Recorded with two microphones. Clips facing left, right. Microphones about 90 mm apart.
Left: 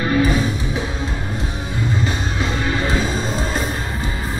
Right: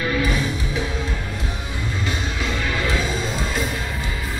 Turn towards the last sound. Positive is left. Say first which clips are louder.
# left 2 dB
turn(degrees=35)  # may be behind; listen again after turning